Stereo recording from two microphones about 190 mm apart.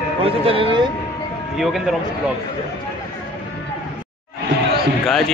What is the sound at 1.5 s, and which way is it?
Speech, centre (ahead or behind).